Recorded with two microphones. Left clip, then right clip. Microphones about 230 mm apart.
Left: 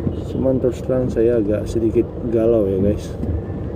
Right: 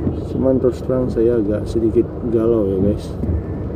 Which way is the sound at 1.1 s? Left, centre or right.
Centre.